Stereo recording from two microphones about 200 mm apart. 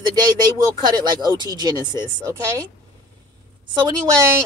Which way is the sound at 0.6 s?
20° right (ahead or behind).